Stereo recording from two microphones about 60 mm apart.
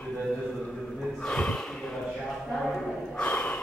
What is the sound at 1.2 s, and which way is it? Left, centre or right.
Snort, centre.